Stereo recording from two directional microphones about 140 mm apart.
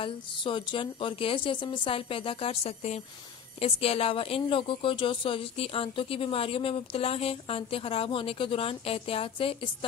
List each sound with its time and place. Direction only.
0.0 s a woman's voice: 35° left (ahead or behind)